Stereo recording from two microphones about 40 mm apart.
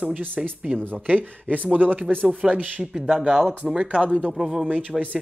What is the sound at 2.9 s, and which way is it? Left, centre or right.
Speech, centre.